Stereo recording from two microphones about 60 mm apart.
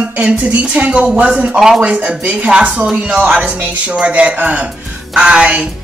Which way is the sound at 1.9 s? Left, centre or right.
Right.